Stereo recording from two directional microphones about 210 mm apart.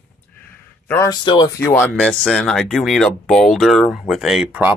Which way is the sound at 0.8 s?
15° left (ahead or behind).